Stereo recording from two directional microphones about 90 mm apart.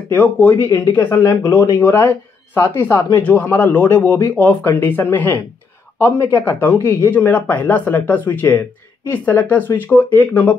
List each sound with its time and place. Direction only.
0.1 s speech: 20° left (ahead or behind)
1.2 s speech: 50° left (ahead or behind)
1.8 s speech: 25° left (ahead or behind)
3.3 s speech: 15° left (ahead or behind)